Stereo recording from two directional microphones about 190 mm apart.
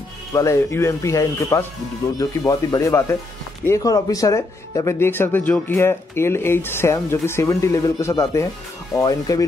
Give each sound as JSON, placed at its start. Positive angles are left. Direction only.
{"t": 0.3, "sound": "speech", "side_deg": 15}